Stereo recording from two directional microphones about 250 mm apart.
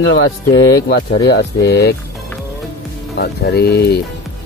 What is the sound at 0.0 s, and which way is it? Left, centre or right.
Speech, left.